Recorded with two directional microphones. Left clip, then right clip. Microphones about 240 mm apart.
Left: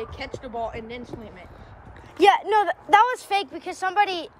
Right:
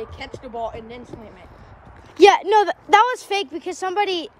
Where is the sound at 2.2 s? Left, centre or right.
Centre.